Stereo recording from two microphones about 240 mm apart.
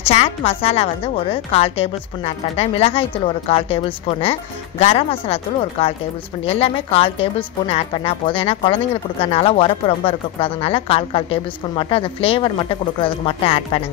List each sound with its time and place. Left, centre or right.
0.0 s a woman's voice: left